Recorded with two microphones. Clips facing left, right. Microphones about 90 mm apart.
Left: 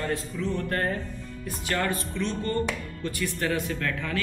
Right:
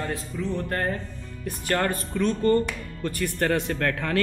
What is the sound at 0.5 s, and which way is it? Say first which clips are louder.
Speech: right 1 dB; 25° right (ahead or behind).